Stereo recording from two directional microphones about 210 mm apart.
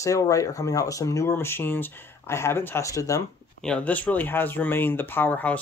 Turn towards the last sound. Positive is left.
turn(degrees=10)  # may be behind; listen again after turning